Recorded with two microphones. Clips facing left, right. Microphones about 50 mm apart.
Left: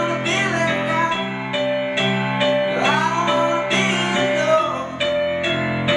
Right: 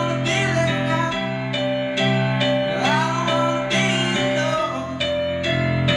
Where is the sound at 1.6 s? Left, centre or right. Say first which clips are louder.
Left 2 dB; centre.